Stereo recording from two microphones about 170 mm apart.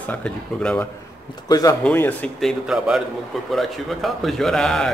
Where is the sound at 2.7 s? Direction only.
Centre (ahead or behind).